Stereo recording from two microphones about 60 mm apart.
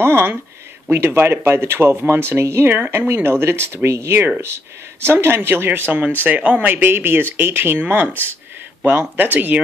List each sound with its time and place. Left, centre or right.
0.0 s speech: right
8.1 s speech: left
8.8 s speech: right